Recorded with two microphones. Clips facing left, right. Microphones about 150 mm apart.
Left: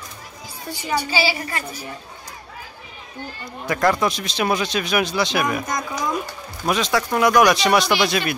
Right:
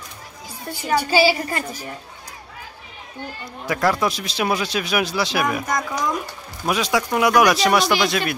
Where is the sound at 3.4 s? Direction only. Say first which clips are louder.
Left 1 dB; 5° right (ahead or behind).